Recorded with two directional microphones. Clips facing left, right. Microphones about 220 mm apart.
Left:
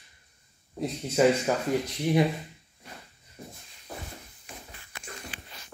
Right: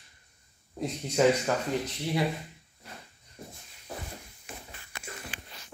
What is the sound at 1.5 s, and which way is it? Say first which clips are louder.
Speech: left 2 dB; 10° left (ahead or behind).